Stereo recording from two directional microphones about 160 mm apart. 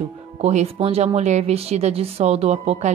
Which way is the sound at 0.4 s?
45° right (ahead or behind).